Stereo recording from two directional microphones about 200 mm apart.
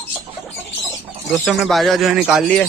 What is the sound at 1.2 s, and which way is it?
Speech, centre (ahead or behind).